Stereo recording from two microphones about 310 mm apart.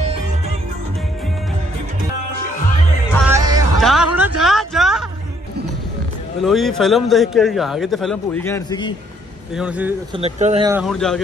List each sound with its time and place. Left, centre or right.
3.3 s music: centre
3.8 s a sound: centre
6.4 s a man's voice: centre
9.6 s a man's voice: centre
10.1 s speech: centre
10.7 s a man's voice: centre